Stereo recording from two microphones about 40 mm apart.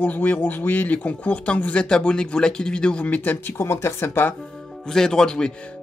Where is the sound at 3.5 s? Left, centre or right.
Left.